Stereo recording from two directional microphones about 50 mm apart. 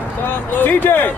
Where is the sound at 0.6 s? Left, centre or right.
Left.